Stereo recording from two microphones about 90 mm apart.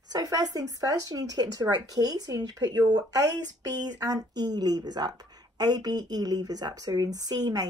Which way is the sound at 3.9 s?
45° right (ahead or behind).